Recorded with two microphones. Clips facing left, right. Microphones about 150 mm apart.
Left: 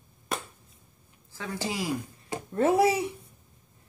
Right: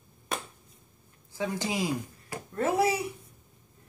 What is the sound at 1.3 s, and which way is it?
Speech, 20° right (ahead or behind).